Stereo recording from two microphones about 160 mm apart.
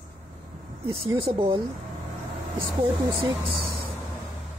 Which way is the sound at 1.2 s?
30° right (ahead or behind).